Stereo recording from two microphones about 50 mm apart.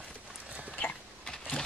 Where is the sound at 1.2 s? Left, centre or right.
Centre.